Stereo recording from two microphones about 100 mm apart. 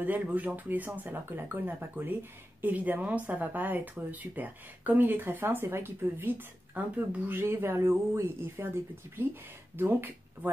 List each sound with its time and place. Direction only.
0.0 s speech: 15° right (ahead or behind)